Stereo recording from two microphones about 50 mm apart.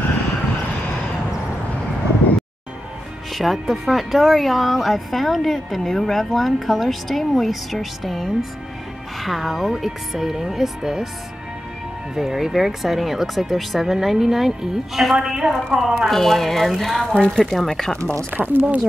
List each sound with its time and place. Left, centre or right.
3.3 s speech: centre
12.2 s speech: centre
18.4 s speech: right